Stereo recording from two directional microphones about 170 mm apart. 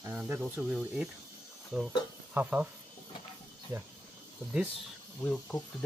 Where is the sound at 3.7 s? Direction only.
15° right (ahead or behind).